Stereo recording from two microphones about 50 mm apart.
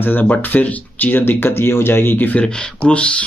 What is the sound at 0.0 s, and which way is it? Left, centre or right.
Speech, left.